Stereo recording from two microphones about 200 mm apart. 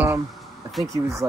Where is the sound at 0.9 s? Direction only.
15° right (ahead or behind).